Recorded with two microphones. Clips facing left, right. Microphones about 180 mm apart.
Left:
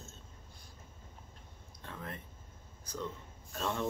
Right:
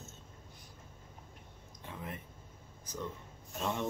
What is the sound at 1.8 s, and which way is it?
Speech, 15° right (ahead or behind).